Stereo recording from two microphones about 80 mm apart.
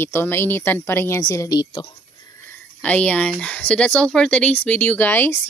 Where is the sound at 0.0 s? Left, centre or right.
Left.